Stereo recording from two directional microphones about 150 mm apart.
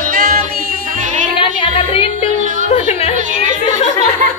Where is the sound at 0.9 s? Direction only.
60° right (ahead or behind).